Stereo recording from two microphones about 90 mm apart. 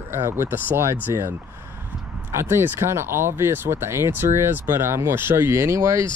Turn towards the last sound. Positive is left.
turn(degrees=-35)  # may be behind; listen again after turning